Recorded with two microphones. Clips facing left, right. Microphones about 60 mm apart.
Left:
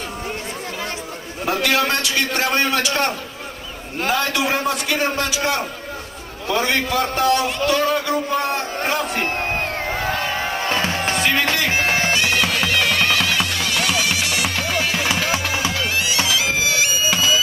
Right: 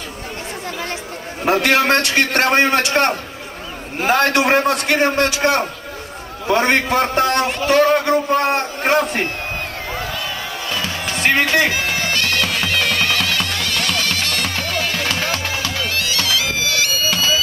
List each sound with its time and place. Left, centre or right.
1.4 s a man's voice: right
2.5 s a man's voice: right
9.6 s music: left
12.1 s music: centre